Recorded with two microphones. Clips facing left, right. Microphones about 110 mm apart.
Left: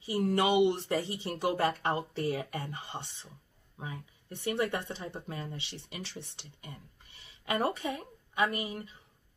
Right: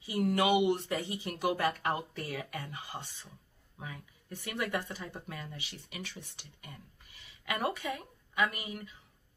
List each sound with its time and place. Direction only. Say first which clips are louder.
0.0 s speech: left 1 dB; 35° left (ahead or behind)